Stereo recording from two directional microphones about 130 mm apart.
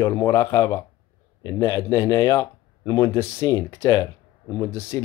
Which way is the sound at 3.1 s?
20° left (ahead or behind).